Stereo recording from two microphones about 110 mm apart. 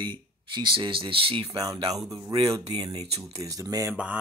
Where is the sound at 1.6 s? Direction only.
35° right (ahead or behind).